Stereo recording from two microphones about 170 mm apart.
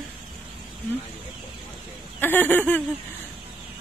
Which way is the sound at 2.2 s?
10° left (ahead or behind).